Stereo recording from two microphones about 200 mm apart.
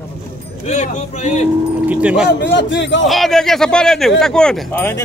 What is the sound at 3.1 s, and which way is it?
Speech, centre (ahead or behind).